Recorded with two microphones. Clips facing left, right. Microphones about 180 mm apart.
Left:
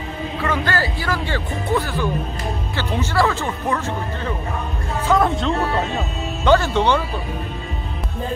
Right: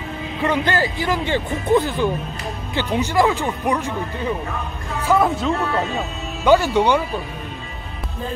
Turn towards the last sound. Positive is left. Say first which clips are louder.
# right 1 dB
turn(degrees=-15)  # may be behind; listen again after turning